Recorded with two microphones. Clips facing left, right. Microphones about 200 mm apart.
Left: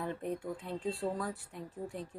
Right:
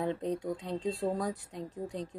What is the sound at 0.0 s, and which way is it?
Speech, 20° right (ahead or behind).